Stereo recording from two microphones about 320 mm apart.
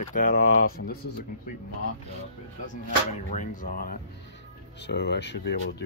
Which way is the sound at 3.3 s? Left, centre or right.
Left.